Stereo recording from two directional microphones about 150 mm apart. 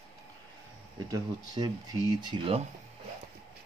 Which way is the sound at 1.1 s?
25° right (ahead or behind).